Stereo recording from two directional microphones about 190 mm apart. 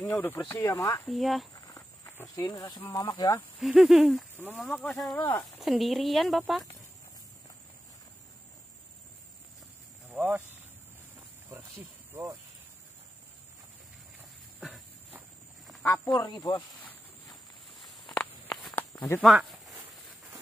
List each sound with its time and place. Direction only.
0.0 s speech: 10° left (ahead or behind)
1.0 s speech: centre (ahead or behind)
1.5 s speech: 15° left (ahead or behind)
3.5 s speech: centre (ahead or behind)
10.1 s speech: 10° right (ahead or behind)
12.1 s speech: 15° right (ahead or behind)
14.6 s a sound: centre (ahead or behind)
15.8 s speech: 15° left (ahead or behind)
17.7 s a sound: centre (ahead or behind)
18.9 s speech: 15° left (ahead or behind)
19.2 s speech: centre (ahead or behind)